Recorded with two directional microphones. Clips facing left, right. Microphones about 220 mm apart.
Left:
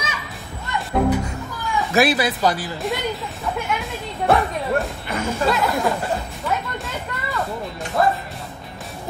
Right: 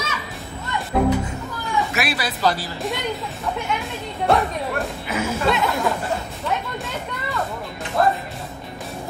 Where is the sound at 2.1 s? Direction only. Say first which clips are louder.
Left 2 dB; 15° left (ahead or behind).